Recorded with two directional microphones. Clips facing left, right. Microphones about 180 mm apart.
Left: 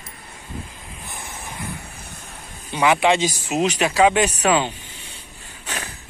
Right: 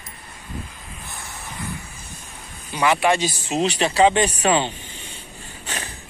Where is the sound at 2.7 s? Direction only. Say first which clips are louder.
Left 2 dB; 20° left (ahead or behind).